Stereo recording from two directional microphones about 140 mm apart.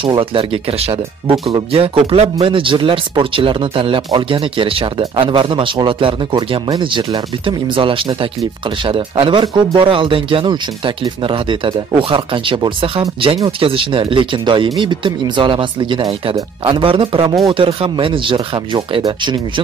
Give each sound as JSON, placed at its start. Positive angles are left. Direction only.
{"t": 0.0, "sound": "speech", "side_deg": -40}